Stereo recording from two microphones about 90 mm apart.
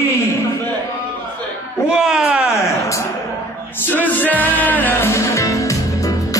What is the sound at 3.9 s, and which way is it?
Music, 20° left (ahead or behind).